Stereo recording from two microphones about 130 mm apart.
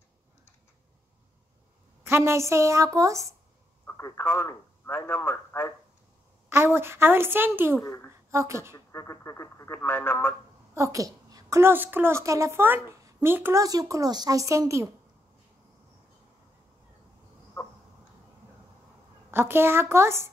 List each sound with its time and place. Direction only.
2.0 s a woman's voice: 20° right (ahead or behind)
3.8 s a man's voice: 25° left (ahead or behind)
6.5 s a woman's voice: 20° right (ahead or behind)
7.8 s speech: 25° left (ahead or behind)
8.3 s a woman's voice: 20° right (ahead or behind)
8.7 s speech: 25° left (ahead or behind)
10.7 s a woman's voice: 25° right (ahead or behind)
19.3 s a woman's voice: 15° right (ahead or behind)